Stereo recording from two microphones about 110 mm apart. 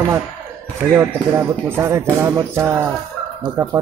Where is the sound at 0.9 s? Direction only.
25° right (ahead or behind).